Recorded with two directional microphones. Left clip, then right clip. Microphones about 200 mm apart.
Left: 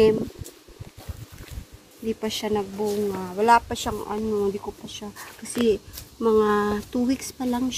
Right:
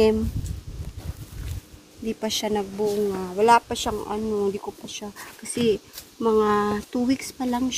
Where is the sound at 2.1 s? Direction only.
20° right (ahead or behind).